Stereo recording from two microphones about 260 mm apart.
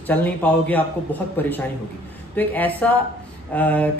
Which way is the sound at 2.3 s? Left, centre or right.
Centre.